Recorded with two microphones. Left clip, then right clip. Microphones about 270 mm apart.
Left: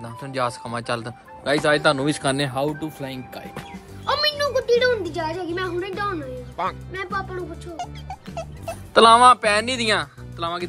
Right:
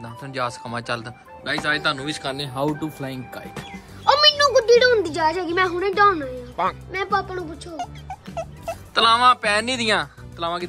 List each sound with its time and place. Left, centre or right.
0.2 s speech: centre
1.4 s speech: centre
2.2 s speech: left
2.5 s speech: centre
4.0 s a woman's voice: right
6.5 s speech: centre
6.9 s speech: right
7.7 s speech: centre